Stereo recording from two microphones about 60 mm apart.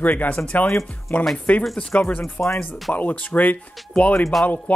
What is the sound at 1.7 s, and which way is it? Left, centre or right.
Speech, left.